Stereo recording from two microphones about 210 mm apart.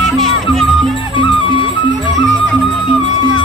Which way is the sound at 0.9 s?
25° left (ahead or behind).